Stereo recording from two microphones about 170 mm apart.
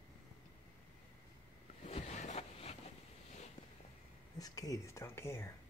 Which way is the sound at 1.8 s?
35° left (ahead or behind).